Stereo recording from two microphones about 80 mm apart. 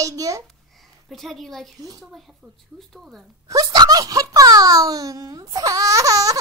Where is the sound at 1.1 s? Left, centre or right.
Centre.